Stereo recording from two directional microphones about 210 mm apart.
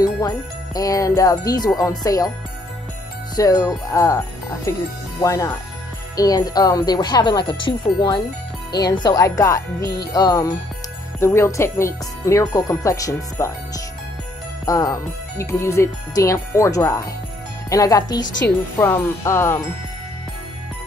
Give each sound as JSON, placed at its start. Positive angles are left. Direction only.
{"t": 0.0, "sound": "jingle bell", "side_deg": 20}
{"t": 1.8, "sound": "speech", "side_deg": 15}
{"t": 3.3, "sound": "speech", "side_deg": 15}